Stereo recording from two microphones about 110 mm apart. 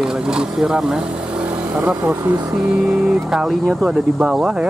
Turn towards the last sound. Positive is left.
turn(degrees=-5)  # may be behind; listen again after turning